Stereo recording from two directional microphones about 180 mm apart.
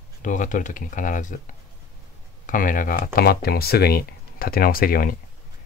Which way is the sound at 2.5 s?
50° left (ahead or behind).